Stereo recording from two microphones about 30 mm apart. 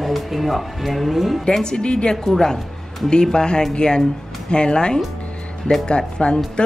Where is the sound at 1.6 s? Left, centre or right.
Left.